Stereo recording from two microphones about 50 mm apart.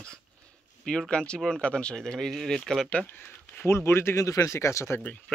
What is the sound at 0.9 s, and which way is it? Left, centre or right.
Speech, centre.